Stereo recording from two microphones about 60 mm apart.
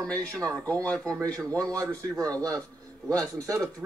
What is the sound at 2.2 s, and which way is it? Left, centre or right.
Speech, centre.